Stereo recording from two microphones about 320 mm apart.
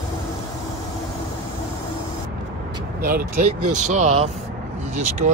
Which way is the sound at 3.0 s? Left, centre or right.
Right.